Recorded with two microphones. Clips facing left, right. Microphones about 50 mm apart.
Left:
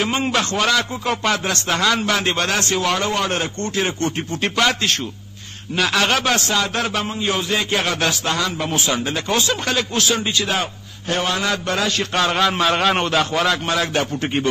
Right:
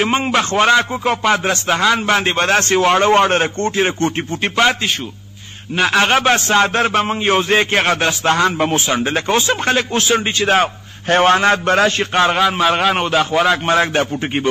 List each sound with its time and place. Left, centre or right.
0.2 s a man's voice: right
2.0 s a man's voice: right
12.1 s a man's voice: right
12.4 s a man's voice: centre
13.7 s a man's voice: right